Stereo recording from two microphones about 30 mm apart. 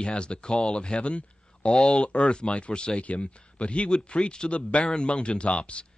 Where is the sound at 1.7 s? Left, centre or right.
Left.